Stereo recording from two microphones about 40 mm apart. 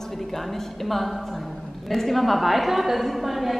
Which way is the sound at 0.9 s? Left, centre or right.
Centre.